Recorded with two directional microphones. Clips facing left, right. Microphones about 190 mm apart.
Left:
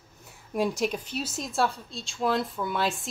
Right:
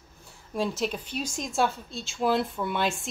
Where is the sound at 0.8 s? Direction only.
5° left (ahead or behind).